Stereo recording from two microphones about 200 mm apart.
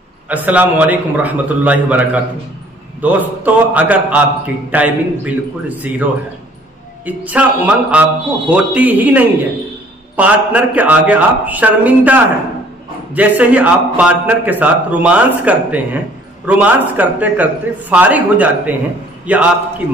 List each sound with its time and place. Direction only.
0.3 s a man's voice: 10° right (ahead or behind)
7.1 s a man's voice: 5° right (ahead or behind)